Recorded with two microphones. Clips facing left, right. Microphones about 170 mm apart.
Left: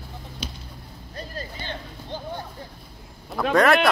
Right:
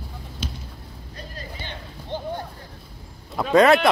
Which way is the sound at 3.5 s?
20° right (ahead or behind).